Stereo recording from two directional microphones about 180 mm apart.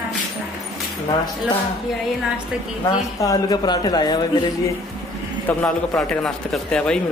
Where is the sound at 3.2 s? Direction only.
20° left (ahead or behind).